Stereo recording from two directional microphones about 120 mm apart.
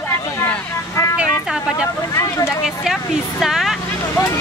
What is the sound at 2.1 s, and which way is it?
Speech, 25° left (ahead or behind).